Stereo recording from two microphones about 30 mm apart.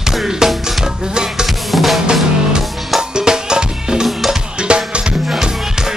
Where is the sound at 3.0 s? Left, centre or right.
Right.